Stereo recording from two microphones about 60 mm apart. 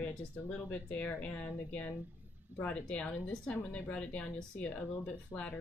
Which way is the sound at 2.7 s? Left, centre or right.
Left.